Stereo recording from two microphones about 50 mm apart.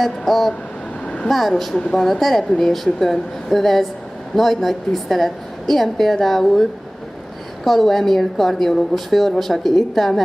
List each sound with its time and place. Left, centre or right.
0.0 s a woman's voice: centre
1.0 s vehicle: left
1.3 s a woman's voice: centre
7.6 s a woman's voice: centre